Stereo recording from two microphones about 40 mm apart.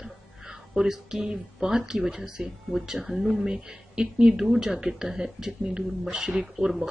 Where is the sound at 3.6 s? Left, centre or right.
Right.